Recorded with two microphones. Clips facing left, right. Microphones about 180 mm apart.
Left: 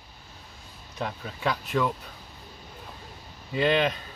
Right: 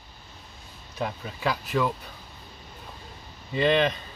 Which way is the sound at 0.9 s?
5° right (ahead or behind).